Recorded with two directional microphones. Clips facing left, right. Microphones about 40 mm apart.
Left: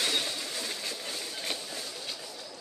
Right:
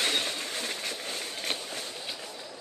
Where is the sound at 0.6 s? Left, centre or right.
Right.